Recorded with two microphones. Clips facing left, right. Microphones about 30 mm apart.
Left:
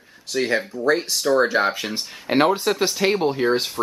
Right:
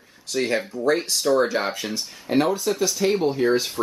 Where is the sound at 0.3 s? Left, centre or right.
Centre.